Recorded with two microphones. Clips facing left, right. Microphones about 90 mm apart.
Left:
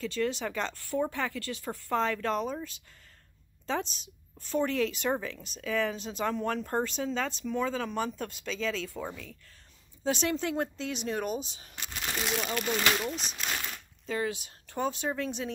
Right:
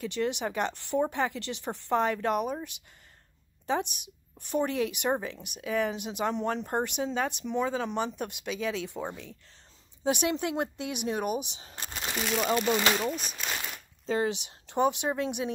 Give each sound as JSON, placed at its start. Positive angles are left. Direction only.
{"t": 0.0, "sound": "speech", "side_deg": -20}
{"t": 3.9, "sound": "speech", "side_deg": -15}
{"t": 11.7, "sound": "a sound", "side_deg": -35}
{"t": 12.9, "sound": "speech", "side_deg": -5}
{"t": 14.0, "sound": "speech", "side_deg": -30}